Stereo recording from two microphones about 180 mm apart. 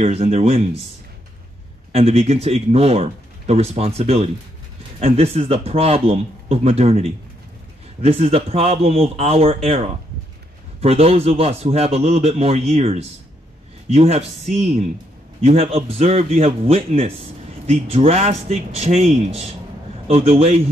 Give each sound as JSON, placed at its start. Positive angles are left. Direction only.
{"t": 0.0, "sound": "speech", "side_deg": -35}
{"t": 1.9, "sound": "speech", "side_deg": -35}